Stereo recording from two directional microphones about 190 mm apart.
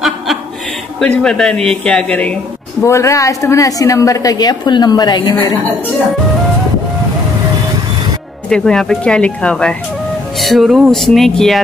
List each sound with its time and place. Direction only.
0.9 s a woman's voice: 5° left (ahead or behind); by 5.3 s 20° left (ahead or behind)
8.5 s speech: 5° left (ahead or behind)